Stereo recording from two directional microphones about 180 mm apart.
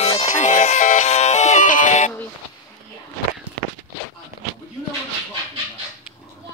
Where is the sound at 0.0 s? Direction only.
40° left (ahead or behind).